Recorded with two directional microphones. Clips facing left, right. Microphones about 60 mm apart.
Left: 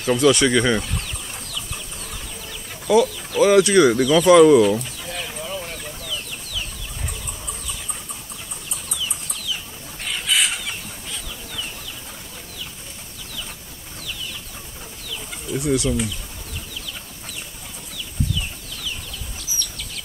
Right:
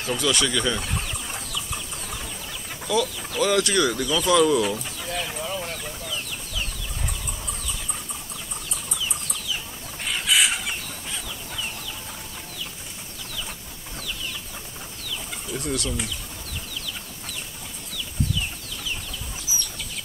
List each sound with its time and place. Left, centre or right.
0.0 s speech: left
0.9 s chicken: centre
2.9 s speech: left
5.0 s a sound: centre
7.1 s chicken: centre
10.0 s chicken: centre
15.0 s bird: centre
19.5 s chicken: centre